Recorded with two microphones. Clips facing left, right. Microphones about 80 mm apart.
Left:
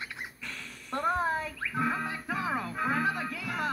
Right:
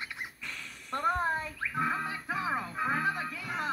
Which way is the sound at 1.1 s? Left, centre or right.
Centre.